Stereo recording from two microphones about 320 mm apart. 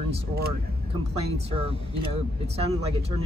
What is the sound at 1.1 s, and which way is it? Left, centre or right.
Speech, centre.